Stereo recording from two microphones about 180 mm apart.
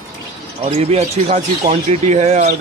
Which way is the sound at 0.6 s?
35° right (ahead or behind).